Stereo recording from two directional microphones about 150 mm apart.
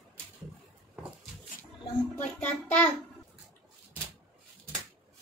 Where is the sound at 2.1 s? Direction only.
10° left (ahead or behind).